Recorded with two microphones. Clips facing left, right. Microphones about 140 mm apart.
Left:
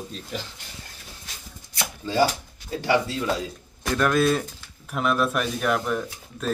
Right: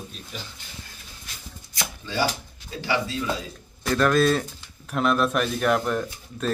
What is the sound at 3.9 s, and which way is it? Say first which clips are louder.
Speech: right 1 dB; 10° left (ahead or behind).